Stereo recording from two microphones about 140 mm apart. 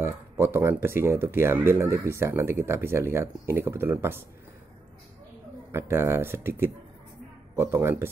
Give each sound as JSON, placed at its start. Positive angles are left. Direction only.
{"t": 0.0, "sound": "speech", "side_deg": -15}
{"t": 5.7, "sound": "speech", "side_deg": -20}